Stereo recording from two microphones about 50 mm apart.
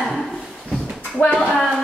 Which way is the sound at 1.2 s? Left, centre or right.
Left.